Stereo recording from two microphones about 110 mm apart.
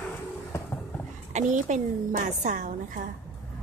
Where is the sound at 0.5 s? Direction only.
25° left (ahead or behind).